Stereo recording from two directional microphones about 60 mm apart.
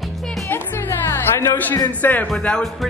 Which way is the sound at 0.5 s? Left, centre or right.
Left.